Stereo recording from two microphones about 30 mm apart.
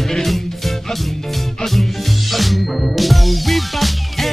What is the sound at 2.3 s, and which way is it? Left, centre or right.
Music, centre.